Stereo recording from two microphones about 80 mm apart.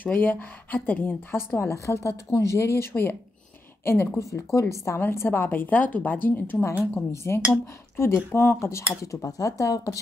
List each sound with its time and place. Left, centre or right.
0.0 s a woman's voice: left
1.6 s speech: left
2.9 s a woman's voice: left